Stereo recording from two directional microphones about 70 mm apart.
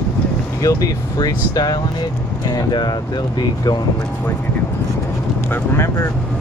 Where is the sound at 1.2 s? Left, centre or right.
Left.